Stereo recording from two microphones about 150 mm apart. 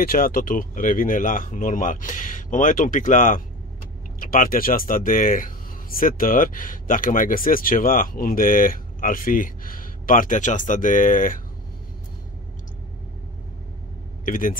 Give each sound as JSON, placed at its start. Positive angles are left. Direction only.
{"t": 0.0, "sound": "speech", "side_deg": 80}
{"t": 14.2, "sound": "speech", "side_deg": 65}